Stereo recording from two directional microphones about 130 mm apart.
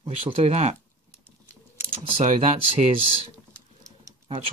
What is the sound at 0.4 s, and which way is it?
Speech, 55° right (ahead or behind).